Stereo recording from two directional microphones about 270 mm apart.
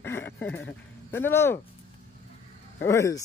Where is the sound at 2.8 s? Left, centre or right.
Centre.